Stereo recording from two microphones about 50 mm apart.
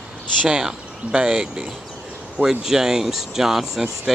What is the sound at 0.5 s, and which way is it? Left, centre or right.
Speech, centre.